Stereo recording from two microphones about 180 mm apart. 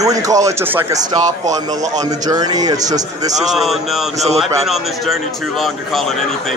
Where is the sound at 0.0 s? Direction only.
20° right (ahead or behind).